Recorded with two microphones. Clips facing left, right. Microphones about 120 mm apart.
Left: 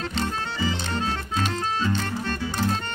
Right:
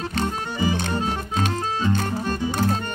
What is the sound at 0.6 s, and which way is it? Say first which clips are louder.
Music: right 5 dB; 15° right (ahead or behind).